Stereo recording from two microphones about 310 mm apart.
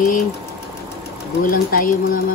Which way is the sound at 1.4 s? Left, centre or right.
Left.